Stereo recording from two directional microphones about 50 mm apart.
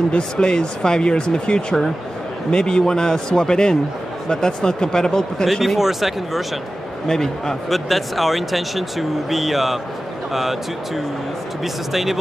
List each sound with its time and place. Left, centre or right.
0.1 s speech: centre
5.5 s speech: centre
7.1 s speech: centre
11.6 s speech: centre